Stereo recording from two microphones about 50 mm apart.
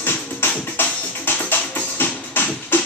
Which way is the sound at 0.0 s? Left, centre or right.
Left.